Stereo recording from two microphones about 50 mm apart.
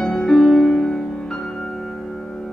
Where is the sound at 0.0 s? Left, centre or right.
Centre.